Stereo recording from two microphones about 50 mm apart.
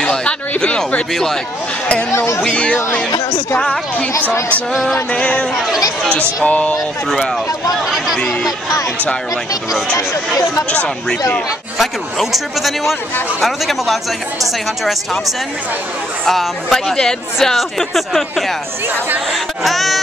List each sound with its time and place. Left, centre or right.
0.0 s a sound: centre
0.6 s speech: centre
2.1 s speech: left
2.4 s speech: centre
5.1 s speech: left
7.7 s speech: centre
10.7 s speech: left
11.8 s speech: centre
16.3 s speech: centre